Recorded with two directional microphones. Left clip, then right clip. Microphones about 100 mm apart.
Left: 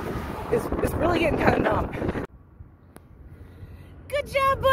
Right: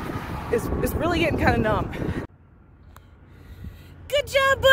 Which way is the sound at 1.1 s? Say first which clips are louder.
Even; 15° right (ahead or behind).